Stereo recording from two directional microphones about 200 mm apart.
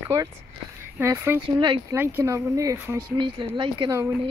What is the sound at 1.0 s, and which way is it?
Speech, 10° right (ahead or behind).